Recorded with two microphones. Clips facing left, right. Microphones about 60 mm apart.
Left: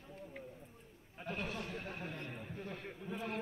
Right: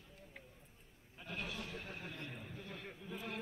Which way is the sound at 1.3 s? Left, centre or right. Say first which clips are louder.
Left 4 dB; left.